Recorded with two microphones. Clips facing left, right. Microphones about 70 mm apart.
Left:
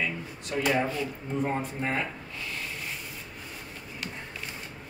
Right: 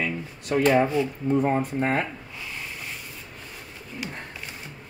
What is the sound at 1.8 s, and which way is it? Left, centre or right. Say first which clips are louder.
Speech: right 6 dB; right.